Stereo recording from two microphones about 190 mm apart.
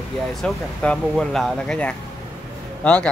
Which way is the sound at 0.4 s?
Centre (ahead or behind).